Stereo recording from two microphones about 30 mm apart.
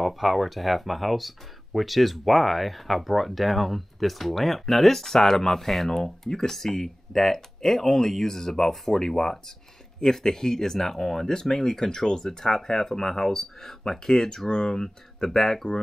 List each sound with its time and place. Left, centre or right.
0.0 s speech: centre
5.9 s speech: left